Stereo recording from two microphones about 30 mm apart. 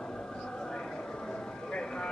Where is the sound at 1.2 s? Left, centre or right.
Left.